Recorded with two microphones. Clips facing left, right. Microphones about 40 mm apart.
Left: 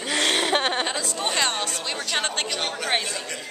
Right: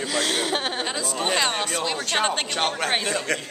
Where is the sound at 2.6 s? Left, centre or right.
Right.